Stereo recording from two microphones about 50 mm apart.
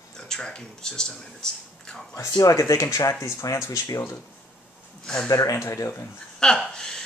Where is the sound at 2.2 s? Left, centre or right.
Left.